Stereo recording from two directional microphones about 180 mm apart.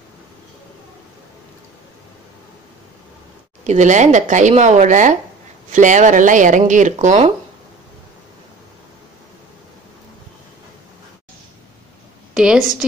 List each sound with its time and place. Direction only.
3.6 s speech: 40° right (ahead or behind)
12.4 s a woman's voice: 5° right (ahead or behind)